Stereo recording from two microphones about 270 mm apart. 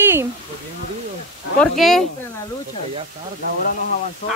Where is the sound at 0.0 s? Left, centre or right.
Centre.